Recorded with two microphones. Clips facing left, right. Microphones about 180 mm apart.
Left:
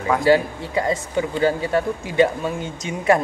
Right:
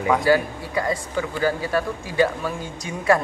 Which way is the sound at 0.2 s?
25° left (ahead or behind).